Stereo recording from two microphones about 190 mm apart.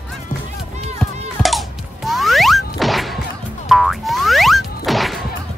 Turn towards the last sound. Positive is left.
turn(degrees=0)  # may be behind; listen again after turning